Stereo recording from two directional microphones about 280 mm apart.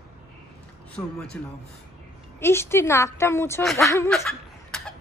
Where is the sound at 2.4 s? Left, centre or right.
Centre.